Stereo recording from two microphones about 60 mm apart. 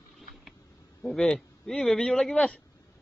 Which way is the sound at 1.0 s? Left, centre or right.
Centre.